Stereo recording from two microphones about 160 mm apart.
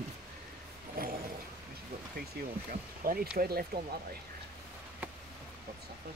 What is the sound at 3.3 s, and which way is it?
Speech, 80° right.